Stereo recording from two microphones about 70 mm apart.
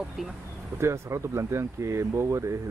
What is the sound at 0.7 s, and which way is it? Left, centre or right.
Speech, right.